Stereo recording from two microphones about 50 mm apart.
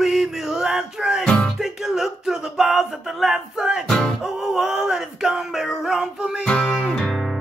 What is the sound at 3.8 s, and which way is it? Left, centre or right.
Music, centre.